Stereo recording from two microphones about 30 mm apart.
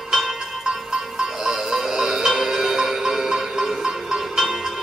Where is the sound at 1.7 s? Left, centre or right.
Centre.